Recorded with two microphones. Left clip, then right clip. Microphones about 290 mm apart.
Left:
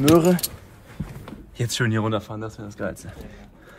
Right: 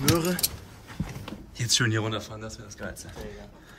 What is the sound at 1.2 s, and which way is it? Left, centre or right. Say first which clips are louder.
Speech: left 6 dB; centre.